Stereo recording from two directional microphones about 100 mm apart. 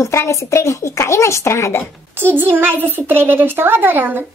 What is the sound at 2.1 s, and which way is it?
A child's voice, 20° right (ahead or behind).